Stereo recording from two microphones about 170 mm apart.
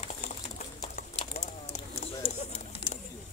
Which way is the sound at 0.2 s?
55° left (ahead or behind).